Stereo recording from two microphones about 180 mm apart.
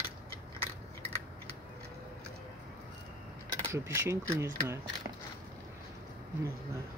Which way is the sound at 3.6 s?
15° right (ahead or behind).